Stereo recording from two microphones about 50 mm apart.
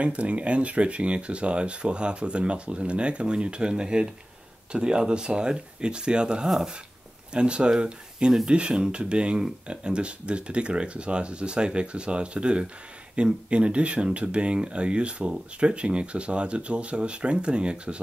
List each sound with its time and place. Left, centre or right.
0.0 s speech: right